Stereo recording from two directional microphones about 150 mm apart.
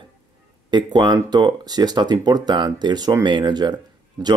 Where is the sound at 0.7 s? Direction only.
30° right (ahead or behind).